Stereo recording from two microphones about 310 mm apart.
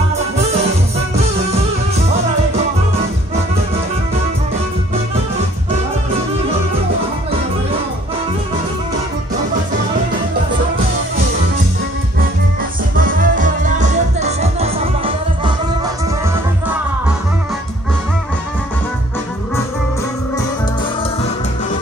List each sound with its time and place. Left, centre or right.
12.9 s music: right